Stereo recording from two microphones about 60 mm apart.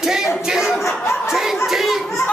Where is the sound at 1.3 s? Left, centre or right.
Centre.